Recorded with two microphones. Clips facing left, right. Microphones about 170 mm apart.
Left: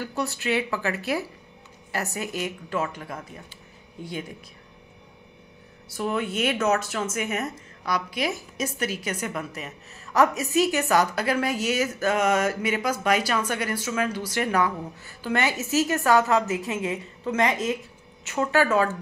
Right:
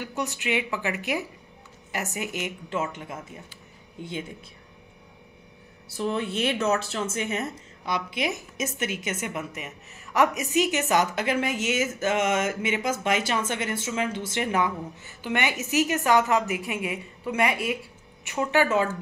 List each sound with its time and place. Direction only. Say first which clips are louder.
0.0 s a woman's voice: left 2 dB; 20° right (ahead or behind)
6.0 s a woman's voice: left 1 dB; 30° right (ahead or behind)